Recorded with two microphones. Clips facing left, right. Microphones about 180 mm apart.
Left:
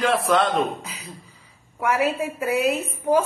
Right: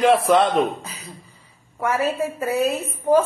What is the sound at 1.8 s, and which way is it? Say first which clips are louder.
Speech: even; 15° left (ahead or behind).